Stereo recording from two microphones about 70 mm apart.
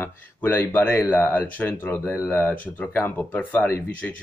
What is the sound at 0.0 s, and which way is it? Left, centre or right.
Speech, left.